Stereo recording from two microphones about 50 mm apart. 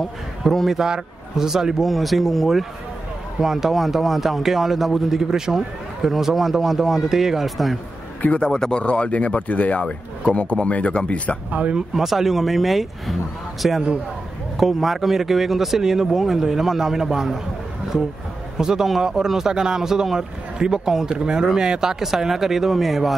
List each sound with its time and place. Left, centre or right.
0.4 s speech: centre
0.7 s a man's voice: centre
8.5 s speech: centre
11.7 s a man's voice: centre
18.6 s a man's voice: centre